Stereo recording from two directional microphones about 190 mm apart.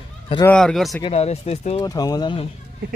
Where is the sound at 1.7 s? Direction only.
20° left (ahead or behind).